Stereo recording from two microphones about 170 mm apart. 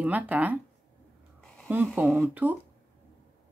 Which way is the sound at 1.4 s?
5° left (ahead or behind).